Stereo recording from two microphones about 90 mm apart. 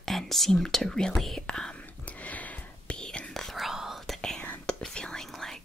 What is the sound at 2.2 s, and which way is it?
Whispering, 15° left (ahead or behind).